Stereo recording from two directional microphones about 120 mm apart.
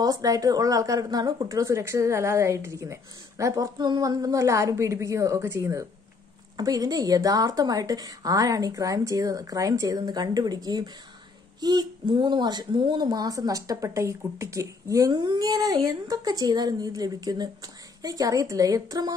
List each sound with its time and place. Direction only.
0.0 s speech: 30° right (ahead or behind)